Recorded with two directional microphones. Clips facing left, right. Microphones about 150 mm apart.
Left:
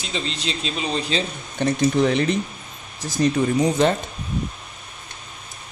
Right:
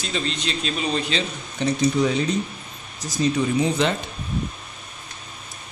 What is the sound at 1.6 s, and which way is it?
Speech, 60° left (ahead or behind).